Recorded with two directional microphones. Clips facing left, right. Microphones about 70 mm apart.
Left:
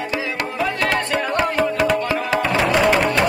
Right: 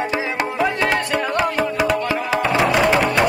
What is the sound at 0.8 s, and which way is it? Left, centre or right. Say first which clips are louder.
Music: right 1 dB; centre.